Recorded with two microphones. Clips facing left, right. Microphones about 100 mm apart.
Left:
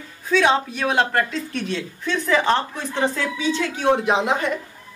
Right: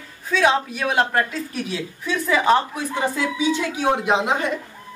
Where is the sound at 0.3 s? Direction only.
5° right (ahead or behind).